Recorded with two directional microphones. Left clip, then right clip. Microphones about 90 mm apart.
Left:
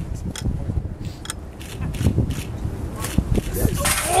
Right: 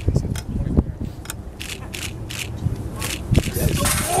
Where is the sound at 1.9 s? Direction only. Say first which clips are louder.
Left 4 dB; 15° right (ahead or behind).